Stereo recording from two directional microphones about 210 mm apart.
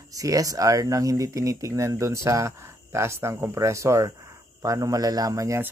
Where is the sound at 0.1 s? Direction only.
15° right (ahead or behind).